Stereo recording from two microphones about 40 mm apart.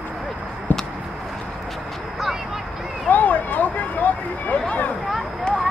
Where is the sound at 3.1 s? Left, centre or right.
Left.